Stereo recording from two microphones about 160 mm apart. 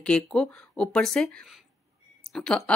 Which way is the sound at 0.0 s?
5° left (ahead or behind).